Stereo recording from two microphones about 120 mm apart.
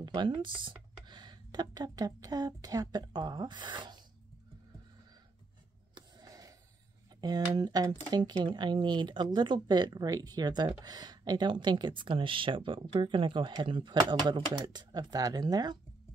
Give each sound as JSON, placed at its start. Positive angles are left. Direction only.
{"t": 0.0, "sound": "speech", "side_deg": -40}
{"t": 5.9, "sound": "a sound", "side_deg": -30}
{"t": 7.2, "sound": "speech", "side_deg": -35}